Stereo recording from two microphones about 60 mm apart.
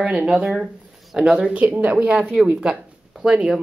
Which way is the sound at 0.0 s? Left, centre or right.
Centre.